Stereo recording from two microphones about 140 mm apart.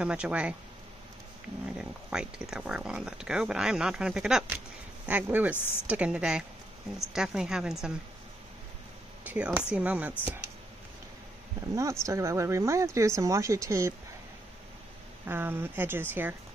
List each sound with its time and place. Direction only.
0.0 s speech: 10° right (ahead or behind)
1.8 s speech: 5° right (ahead or behind)
9.2 s speech: 10° right (ahead or behind)
11.7 s speech: 20° right (ahead or behind)
15.2 s speech: 15° right (ahead or behind)